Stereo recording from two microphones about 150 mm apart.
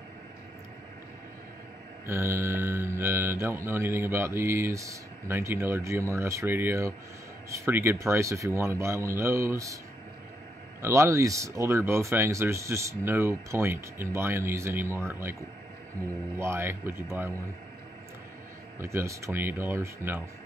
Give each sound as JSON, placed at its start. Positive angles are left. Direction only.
{"t": 2.0, "sound": "mantra", "side_deg": -15}
{"t": 10.8, "sound": "mantra", "side_deg": -20}
{"t": 16.3, "sound": "mantra", "side_deg": -15}
{"t": 18.8, "sound": "mantra", "side_deg": -15}